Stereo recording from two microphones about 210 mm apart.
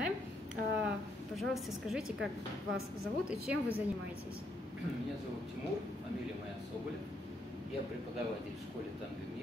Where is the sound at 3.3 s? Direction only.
5° right (ahead or behind).